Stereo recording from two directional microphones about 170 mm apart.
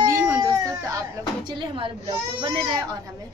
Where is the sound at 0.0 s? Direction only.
20° right (ahead or behind).